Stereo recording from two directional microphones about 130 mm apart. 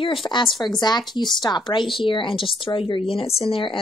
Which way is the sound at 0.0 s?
40° left (ahead or behind).